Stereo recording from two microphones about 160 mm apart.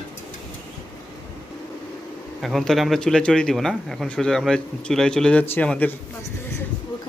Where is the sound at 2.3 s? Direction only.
Centre (ahead or behind).